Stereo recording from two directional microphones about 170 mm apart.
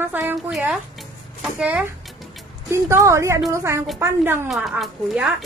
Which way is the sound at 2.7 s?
15° right (ahead or behind).